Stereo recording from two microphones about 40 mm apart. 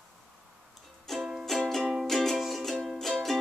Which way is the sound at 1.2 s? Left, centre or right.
Centre.